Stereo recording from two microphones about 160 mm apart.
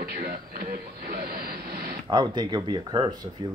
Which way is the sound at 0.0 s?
70° right (ahead or behind).